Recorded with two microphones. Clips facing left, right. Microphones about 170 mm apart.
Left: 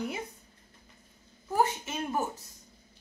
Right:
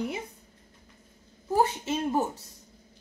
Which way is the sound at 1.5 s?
30° right (ahead or behind).